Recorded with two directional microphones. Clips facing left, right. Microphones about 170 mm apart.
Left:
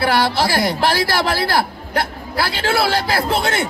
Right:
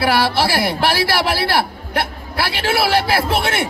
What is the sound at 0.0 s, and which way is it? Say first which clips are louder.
A man's voice: even; 10° right (ahead or behind).